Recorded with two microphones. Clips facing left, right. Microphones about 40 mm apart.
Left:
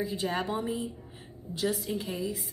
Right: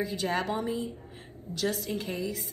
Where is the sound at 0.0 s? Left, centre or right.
Right.